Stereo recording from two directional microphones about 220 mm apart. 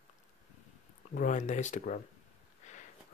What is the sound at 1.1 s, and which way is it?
Speech, 35° left (ahead or behind).